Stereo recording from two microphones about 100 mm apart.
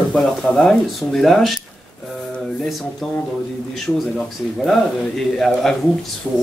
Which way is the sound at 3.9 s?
25° left (ahead or behind).